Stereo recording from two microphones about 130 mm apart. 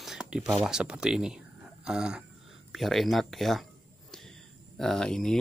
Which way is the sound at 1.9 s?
5° right (ahead or behind).